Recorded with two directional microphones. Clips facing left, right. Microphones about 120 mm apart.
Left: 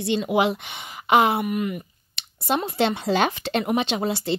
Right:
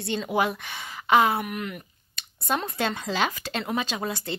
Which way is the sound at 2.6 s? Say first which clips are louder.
Left 6 dB; 25° left (ahead or behind).